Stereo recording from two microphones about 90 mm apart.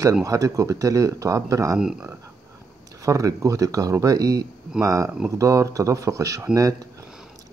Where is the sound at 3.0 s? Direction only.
35° right (ahead or behind).